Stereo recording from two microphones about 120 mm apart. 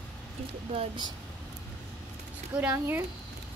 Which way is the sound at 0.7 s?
40° right (ahead or behind).